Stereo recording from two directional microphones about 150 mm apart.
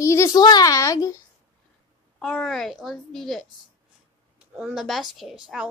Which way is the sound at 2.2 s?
5° left (ahead or behind).